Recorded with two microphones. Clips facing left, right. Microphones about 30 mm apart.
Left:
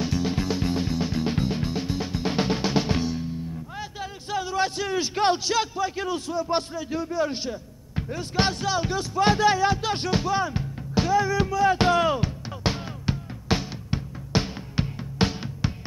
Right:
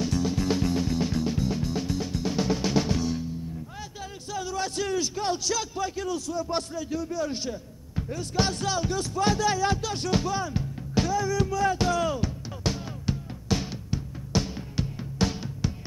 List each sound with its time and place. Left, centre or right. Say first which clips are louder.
0.0 s music: left 1 dB; centre
1.2 s music: left 2 dB; left
4.0 s a sound: left 4 dB; left
5.1 s speech: left 6 dB; left
5.4 s a man's voice: left 4 dB; left
6.3 s music: left 3 dB; left
7.9 s speech: left 1 dB; left
8.5 s music: left 2 dB; centre